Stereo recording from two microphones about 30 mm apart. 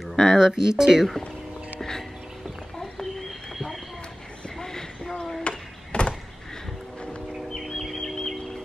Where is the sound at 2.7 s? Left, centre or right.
Centre.